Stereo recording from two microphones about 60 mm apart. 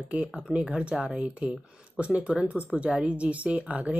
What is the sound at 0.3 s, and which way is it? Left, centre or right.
Speech, centre.